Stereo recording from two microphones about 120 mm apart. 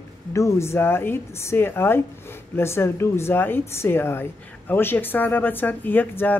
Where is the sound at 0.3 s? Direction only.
25° left (ahead or behind).